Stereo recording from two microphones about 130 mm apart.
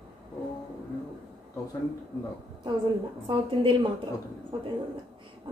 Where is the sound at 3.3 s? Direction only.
40° right (ahead or behind).